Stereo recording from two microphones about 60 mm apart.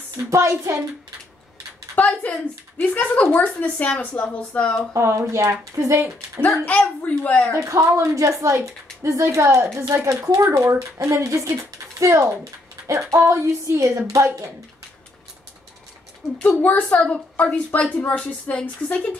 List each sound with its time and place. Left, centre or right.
0.2 s speech: right
2.0 s a woman's voice: left
4.9 s speech: right
6.6 s a woman's voice: left
7.6 s speech: right
10.0 s speech: right
16.3 s a woman's voice: left